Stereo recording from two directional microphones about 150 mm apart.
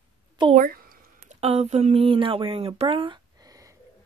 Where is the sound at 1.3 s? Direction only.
45° right (ahead or behind).